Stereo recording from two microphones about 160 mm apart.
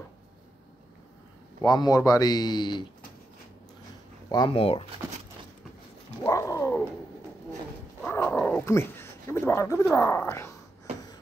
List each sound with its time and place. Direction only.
1.6 s speech: 25° left (ahead or behind)
4.3 s speech: 30° left (ahead or behind)
6.2 s cat: 20° left (ahead or behind)
8.0 s speech: 10° left (ahead or behind)